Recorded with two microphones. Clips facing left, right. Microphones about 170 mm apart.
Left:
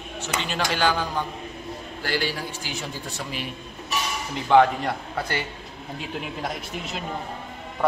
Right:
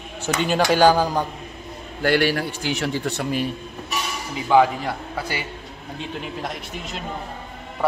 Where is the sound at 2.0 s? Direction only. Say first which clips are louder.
Right 8 dB; 65° right (ahead or behind).